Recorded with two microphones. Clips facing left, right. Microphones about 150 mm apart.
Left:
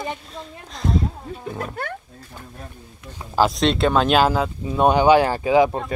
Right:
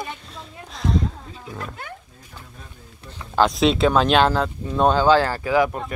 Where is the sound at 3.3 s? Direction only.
Centre (ahead or behind).